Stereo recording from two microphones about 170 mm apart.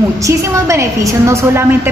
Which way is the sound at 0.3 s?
15° right (ahead or behind).